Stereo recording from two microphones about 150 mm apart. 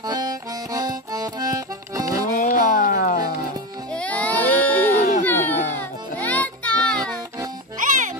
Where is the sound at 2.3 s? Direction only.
65° left (ahead or behind).